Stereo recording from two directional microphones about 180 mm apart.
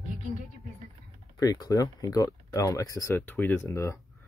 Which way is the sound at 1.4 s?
20° left (ahead or behind).